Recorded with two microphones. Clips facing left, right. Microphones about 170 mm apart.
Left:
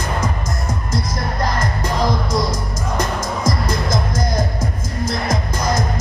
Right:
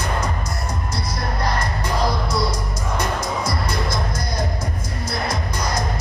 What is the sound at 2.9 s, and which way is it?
Music, 45° left (ahead or behind).